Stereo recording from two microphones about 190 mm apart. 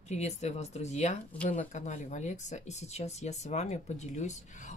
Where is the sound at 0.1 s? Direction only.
35° left (ahead or behind).